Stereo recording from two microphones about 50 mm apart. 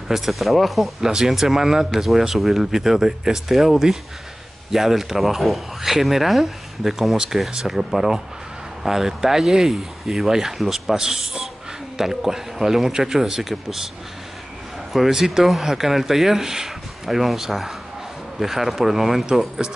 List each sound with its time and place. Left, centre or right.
0.1 s speech: centre
14.9 s speech: centre